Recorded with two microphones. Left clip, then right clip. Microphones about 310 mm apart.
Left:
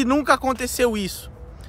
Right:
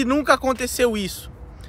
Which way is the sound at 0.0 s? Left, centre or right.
Centre.